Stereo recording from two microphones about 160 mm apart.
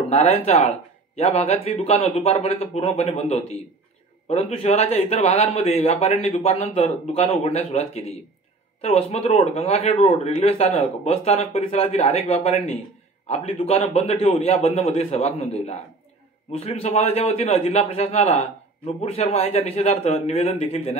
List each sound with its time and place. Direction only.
0.1 s a man's voice: 40° left (ahead or behind)